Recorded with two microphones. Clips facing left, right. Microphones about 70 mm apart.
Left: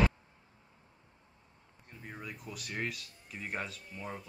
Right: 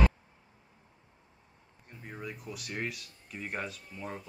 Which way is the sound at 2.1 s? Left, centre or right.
Centre.